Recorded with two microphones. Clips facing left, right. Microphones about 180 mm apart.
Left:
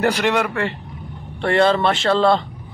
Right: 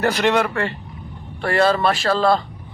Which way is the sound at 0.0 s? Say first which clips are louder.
Even; 15° left (ahead or behind).